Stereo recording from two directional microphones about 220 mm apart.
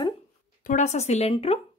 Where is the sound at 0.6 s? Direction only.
35° left (ahead or behind).